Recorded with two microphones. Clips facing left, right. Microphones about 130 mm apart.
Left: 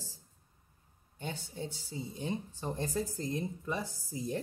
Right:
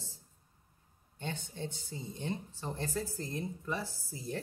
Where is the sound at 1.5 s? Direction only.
10° left (ahead or behind).